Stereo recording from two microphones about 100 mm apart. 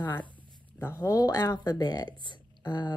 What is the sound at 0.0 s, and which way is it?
Speech, 45° left (ahead or behind).